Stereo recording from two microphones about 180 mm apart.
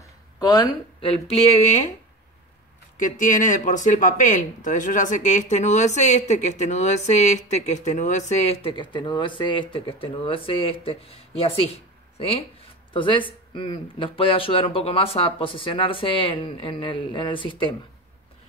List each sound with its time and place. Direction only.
0.4 s a sound: 20° left (ahead or behind)
1.0 s speech: 35° left (ahead or behind)
3.0 s speech: 45° left (ahead or behind)
8.7 s speech: 25° left (ahead or behind)